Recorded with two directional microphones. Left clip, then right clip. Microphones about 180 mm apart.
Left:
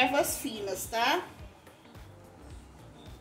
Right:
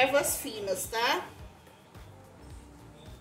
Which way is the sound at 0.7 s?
35° left (ahead or behind).